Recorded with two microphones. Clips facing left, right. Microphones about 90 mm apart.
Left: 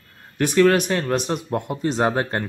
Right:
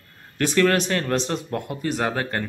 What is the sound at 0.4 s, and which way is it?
A man's voice, 15° left (ahead or behind).